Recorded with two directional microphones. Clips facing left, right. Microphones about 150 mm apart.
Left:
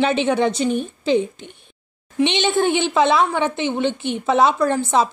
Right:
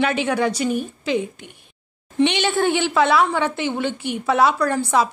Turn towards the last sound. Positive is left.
turn(degrees=25)  # may be behind; listen again after turning